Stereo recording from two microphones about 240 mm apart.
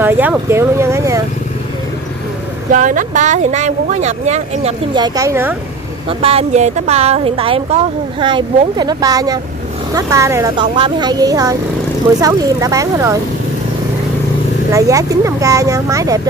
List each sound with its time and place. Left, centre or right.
0.0 s speech: centre
2.7 s a woman's voice: right; by 5.6 s centre
6.0 s a woman's voice: right
14.7 s speech: centre